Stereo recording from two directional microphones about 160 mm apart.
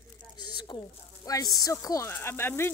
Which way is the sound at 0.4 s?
30° left (ahead or behind).